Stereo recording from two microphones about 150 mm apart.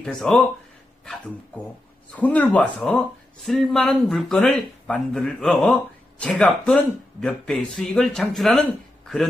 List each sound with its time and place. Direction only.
0.0 s speech: 5° left (ahead or behind)
1.0 s a sound: 5° left (ahead or behind)
2.1 s speech: 10° left (ahead or behind)